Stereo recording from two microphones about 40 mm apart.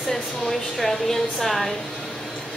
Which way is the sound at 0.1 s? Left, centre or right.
Centre.